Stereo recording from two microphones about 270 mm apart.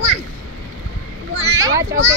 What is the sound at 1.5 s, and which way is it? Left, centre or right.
Speech, centre.